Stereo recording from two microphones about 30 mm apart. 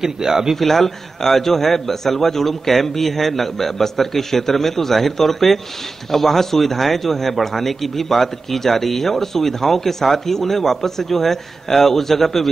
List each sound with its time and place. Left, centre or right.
0.0 s speech: centre
0.6 s speech: centre